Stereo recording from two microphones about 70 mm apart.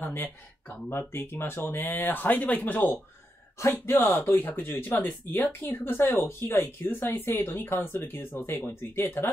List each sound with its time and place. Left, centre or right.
0.0 s speech: left
3.7 s speech: left